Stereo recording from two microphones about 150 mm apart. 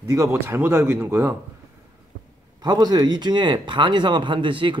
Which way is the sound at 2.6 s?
25° right (ahead or behind).